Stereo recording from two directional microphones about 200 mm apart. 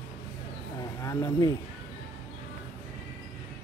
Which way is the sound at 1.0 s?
15° left (ahead or behind).